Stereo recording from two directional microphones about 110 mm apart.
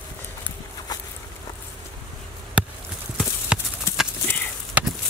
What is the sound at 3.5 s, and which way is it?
Clip-clop, 10° right (ahead or behind).